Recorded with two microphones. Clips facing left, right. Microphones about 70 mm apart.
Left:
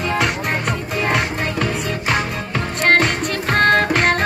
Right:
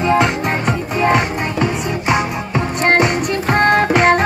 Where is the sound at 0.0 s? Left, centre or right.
Centre.